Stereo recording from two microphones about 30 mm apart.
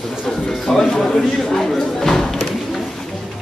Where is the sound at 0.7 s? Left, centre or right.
Centre.